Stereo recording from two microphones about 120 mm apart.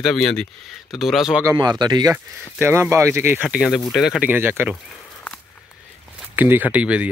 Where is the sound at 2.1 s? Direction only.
20° right (ahead or behind).